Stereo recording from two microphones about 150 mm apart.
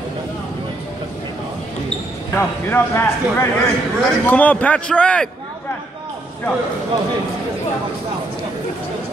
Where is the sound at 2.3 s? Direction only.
15° left (ahead or behind).